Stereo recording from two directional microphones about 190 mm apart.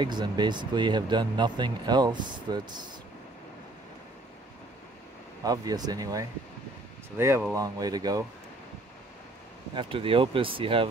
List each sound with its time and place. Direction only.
0.0 s speech: 25° right (ahead or behind)
5.4 s speech: 20° right (ahead or behind)
9.8 s speech: 30° right (ahead or behind)